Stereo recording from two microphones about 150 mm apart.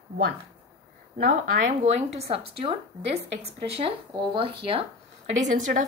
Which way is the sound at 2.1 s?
40° right (ahead or behind).